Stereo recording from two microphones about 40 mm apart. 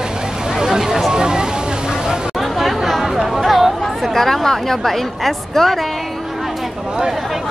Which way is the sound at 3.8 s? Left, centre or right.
Centre.